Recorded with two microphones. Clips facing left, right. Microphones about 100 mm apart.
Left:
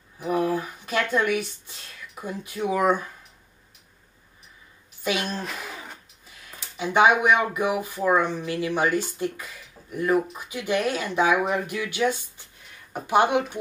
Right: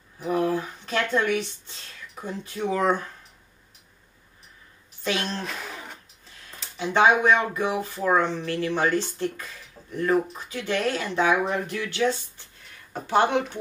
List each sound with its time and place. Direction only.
0.2 s speech: 10° left (ahead or behind)
5.0 s a sound: 10° left (ahead or behind)
7.5 s speech: 15° left (ahead or behind)